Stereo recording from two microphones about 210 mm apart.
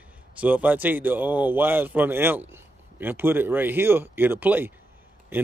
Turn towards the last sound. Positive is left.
turn(degrees=-10)  # may be behind; listen again after turning